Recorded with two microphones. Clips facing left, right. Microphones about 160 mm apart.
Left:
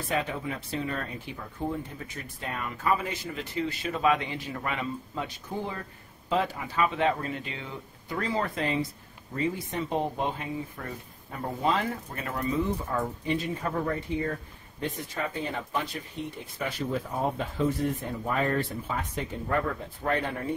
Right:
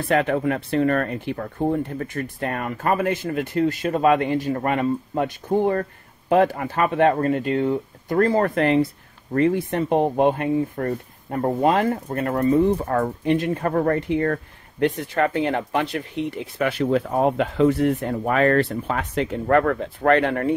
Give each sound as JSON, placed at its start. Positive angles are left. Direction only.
{"t": 0.1, "sound": "speech", "side_deg": -65}